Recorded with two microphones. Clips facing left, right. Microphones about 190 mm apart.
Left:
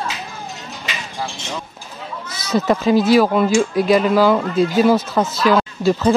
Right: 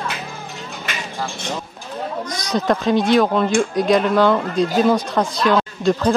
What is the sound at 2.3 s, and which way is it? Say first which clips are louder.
Speech: left 3 dB; 5° left (ahead or behind).